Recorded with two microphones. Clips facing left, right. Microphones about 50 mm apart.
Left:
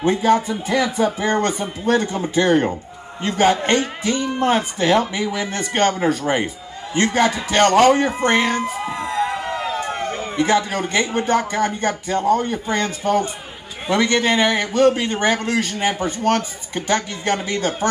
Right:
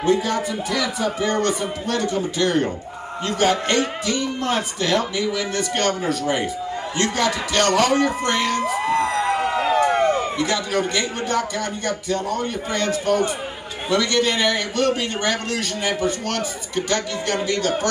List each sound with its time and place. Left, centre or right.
0.0 s a man's voice: left
10.3 s a man's voice: left